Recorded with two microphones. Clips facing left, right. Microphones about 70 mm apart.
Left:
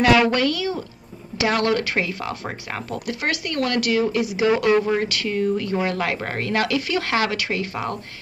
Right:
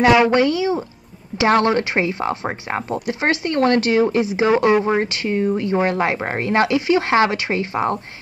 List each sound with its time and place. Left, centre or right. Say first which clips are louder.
0.0 s speech: right 3 dB; right